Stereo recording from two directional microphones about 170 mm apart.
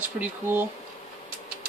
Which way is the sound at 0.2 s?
10° right (ahead or behind).